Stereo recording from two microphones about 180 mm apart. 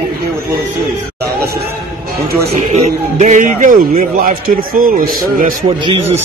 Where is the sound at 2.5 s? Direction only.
40° right (ahead or behind).